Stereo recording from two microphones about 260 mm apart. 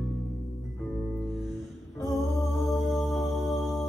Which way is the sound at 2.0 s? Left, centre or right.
Centre.